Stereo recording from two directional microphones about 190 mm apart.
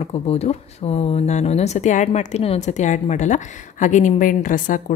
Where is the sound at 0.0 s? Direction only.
35° left (ahead or behind).